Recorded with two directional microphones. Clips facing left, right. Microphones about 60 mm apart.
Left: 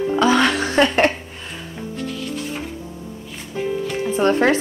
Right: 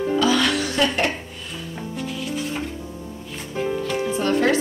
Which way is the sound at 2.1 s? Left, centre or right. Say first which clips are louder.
Even; centre.